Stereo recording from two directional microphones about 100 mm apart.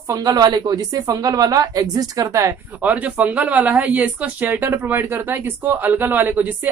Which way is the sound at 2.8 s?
15° right (ahead or behind).